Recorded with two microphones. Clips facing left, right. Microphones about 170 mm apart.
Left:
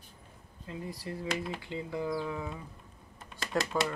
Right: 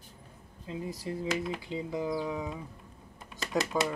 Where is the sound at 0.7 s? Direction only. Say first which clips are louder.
Right 3 dB; 20° right (ahead or behind).